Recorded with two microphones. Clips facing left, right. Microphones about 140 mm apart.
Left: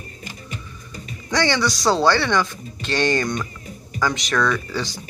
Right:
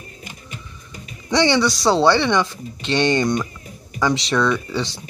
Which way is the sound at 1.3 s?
25° right (ahead or behind).